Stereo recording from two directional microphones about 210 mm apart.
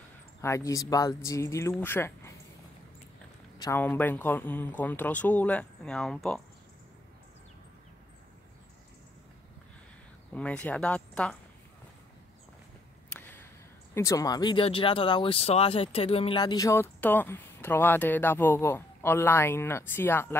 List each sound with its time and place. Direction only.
0.4 s speech: 15° left (ahead or behind)
3.5 s speech: 15° left (ahead or behind)
10.3 s speech: 5° left (ahead or behind)
13.1 s a sound: 10° left (ahead or behind)
13.9 s speech: 15° left (ahead or behind)